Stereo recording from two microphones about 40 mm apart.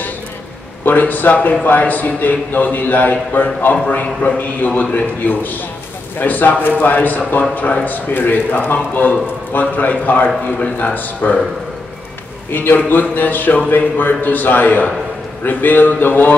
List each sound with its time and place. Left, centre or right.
0.8 s a man's voice: left
10.2 s a man's voice: left
12.5 s a man's voice: left